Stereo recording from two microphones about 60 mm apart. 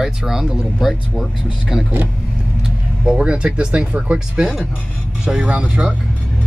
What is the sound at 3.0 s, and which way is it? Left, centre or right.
Speech, centre.